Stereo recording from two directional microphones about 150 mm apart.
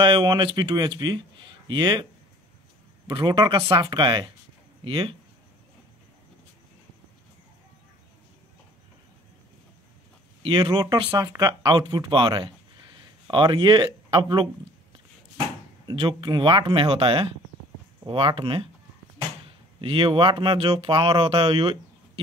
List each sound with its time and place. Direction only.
0.0 s speech: 30° right (ahead or behind)
3.1 s speech: 35° right (ahead or behind)
10.4 s speech: 30° right (ahead or behind)
15.9 s speech: 35° right (ahead or behind)
19.8 s speech: 35° right (ahead or behind)